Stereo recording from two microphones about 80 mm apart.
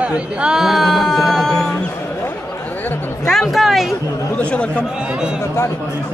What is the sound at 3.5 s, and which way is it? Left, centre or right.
Speech, centre.